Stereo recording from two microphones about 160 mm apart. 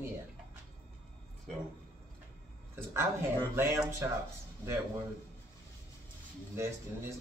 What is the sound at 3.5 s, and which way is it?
Speech, 15° right (ahead or behind).